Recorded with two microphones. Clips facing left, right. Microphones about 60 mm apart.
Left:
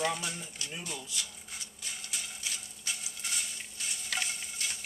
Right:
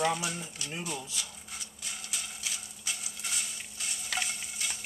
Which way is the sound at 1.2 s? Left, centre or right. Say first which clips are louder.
Even; centre.